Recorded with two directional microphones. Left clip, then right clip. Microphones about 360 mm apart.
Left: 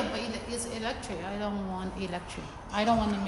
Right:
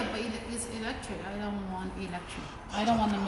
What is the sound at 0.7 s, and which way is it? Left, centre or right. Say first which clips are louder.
Speech: left 1 dB; left.